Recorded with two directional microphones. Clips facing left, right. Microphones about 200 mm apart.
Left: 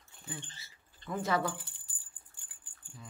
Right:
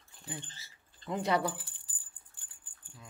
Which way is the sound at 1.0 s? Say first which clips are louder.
Right 1 dB; 15° right (ahead or behind).